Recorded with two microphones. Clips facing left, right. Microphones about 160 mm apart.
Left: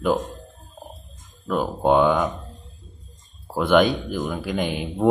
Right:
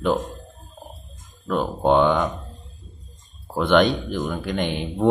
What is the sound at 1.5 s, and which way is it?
Speech, 5° left (ahead or behind).